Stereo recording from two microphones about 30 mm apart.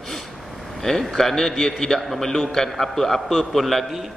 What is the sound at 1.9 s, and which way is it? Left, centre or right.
A man's voice, centre.